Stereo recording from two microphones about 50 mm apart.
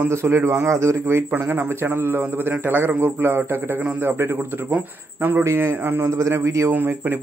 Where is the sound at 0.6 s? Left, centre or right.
Right.